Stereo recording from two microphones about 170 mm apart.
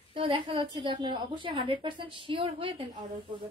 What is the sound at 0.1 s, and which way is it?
A woman's voice, 30° right (ahead or behind).